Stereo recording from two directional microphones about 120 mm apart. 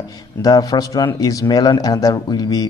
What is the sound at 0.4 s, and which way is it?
A man's voice, 30° left (ahead or behind).